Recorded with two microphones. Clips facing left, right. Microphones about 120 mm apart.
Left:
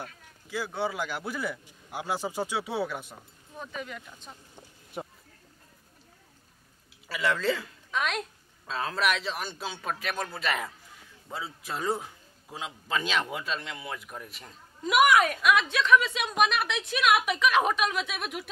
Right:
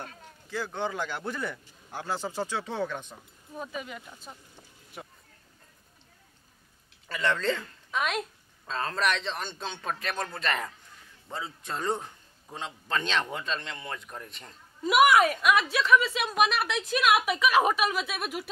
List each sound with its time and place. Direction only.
0.5 s a man's voice: 10° left (ahead or behind)
3.5 s a man's voice: 5° right (ahead or behind)
5.0 s a sound: 30° left (ahead or behind)
7.1 s a man's voice: 5° left (ahead or behind)